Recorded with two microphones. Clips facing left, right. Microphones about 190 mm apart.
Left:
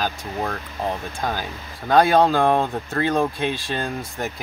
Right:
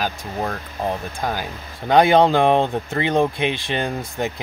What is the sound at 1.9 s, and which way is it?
Speech, 20° right (ahead or behind).